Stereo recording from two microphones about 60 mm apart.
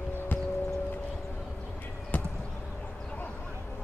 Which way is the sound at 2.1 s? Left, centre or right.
Left.